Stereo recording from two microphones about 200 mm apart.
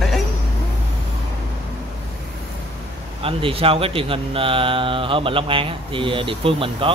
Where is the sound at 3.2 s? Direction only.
30° right (ahead or behind).